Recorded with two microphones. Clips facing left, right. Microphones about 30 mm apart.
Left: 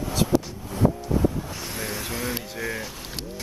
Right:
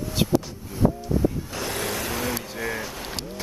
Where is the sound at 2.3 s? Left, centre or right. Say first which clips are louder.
Right 1 dB; centre.